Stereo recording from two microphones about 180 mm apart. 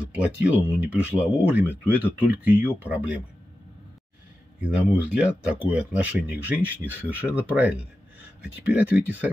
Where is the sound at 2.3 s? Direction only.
10° right (ahead or behind).